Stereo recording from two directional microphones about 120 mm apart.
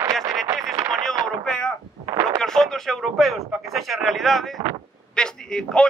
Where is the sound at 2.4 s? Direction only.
5° left (ahead or behind).